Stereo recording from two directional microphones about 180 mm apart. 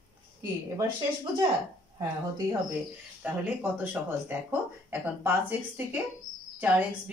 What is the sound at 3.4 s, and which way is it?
A woman's voice, 10° right (ahead or behind).